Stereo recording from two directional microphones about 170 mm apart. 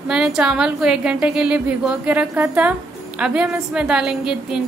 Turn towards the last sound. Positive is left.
turn(degrees=-5)  # may be behind; listen again after turning